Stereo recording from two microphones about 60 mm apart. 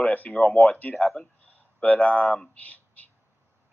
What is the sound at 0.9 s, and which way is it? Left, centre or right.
Speech, centre.